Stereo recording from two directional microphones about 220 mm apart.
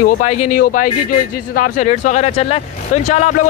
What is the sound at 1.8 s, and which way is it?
Speech, 35° left (ahead or behind).